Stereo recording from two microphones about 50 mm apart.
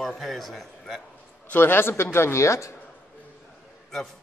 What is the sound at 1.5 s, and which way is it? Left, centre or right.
Speech, left.